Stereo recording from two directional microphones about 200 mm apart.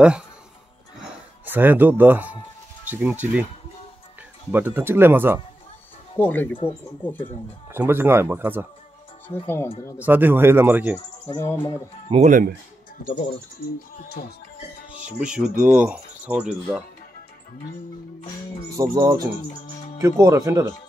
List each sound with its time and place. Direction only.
1.4 s speech: 10° right (ahead or behind)
4.5 s speech: 10° right (ahead or behind)
6.1 s speech: 10° left (ahead or behind)
7.7 s speech: 10° right (ahead or behind)
9.9 s speech: 10° right (ahead or behind)
11.2 s speech: 15° left (ahead or behind)
12.1 s speech: 40° right (ahead or behind)
14.9 s speech: 5° right (ahead or behind)
18.8 s speech: 15° right (ahead or behind)